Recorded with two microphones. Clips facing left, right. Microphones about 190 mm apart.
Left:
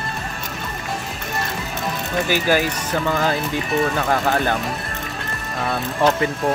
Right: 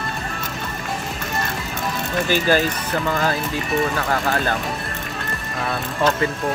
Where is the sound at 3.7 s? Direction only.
Centre (ahead or behind).